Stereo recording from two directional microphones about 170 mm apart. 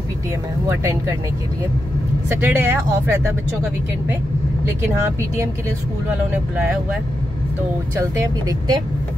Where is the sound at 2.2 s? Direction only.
15° right (ahead or behind).